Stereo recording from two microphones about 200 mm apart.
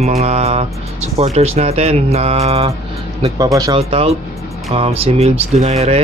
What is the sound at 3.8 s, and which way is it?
Speech, 30° right (ahead or behind).